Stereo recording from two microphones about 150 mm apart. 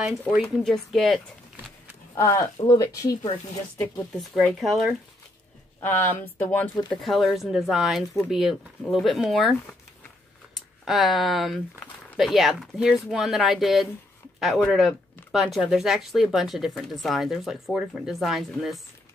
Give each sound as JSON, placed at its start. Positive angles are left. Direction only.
{"t": 0.0, "sound": "speech", "side_deg": -10}
{"t": 0.7, "sound": "speech", "side_deg": 0}
{"t": 2.1, "sound": "speech", "side_deg": 20}
{"t": 4.2, "sound": "speech", "side_deg": 0}
{"t": 5.8, "sound": "speech", "side_deg": 15}
{"t": 7.0, "sound": "speech", "side_deg": 0}